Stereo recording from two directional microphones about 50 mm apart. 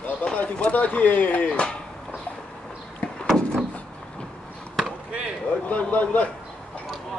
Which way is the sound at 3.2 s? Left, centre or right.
Centre.